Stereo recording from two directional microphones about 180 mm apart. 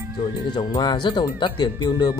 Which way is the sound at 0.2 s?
25° left (ahead or behind).